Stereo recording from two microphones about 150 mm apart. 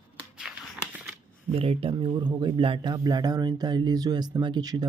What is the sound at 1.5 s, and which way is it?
Speech, 40° right (ahead or behind).